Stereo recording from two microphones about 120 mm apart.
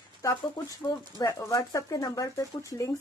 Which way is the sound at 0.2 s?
25° left (ahead or behind).